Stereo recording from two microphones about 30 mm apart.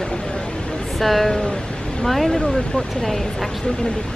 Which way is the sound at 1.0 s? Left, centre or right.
Centre.